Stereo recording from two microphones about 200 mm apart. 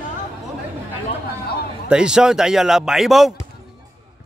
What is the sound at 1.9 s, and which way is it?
Speech, 5° right (ahead or behind).